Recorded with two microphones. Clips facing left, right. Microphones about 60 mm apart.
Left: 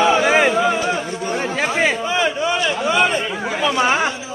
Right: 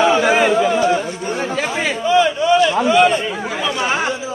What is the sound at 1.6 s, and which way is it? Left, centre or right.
Speech, left.